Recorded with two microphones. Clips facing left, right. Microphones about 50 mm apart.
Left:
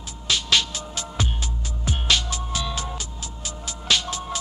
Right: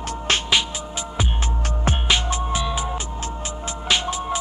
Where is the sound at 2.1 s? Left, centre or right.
Right.